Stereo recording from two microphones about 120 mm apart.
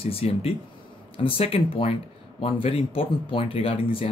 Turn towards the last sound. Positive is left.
turn(degrees=50)  # may be behind; listen again after turning